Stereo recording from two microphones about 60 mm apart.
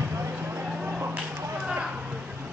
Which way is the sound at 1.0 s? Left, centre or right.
Right.